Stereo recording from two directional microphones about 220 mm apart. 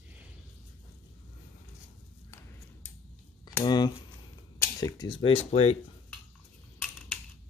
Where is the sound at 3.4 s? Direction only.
20° left (ahead or behind).